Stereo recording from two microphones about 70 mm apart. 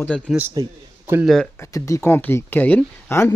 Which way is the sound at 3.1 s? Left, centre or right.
Left.